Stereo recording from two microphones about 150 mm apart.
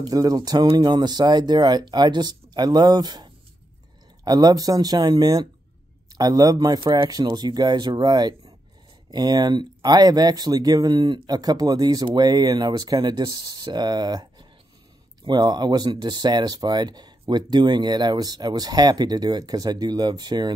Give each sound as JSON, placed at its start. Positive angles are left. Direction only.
{"t": 0.0, "sound": "speech", "side_deg": -25}
{"t": 15.2, "sound": "speech", "side_deg": -30}